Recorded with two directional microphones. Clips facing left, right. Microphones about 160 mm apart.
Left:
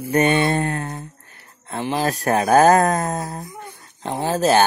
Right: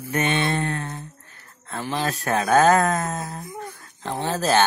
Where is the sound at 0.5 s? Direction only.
30° left (ahead or behind).